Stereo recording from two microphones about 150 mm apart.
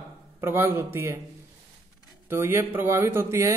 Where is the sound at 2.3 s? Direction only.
15° right (ahead or behind).